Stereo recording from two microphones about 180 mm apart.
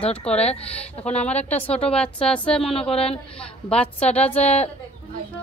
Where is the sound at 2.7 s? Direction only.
35° left (ahead or behind).